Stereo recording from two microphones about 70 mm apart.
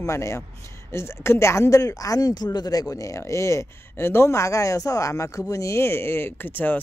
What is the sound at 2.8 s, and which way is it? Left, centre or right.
Speech, left.